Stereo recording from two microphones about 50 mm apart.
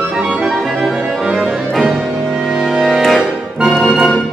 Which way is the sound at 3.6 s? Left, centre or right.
Centre.